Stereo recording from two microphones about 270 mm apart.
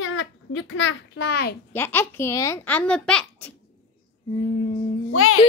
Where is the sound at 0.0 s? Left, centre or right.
Left.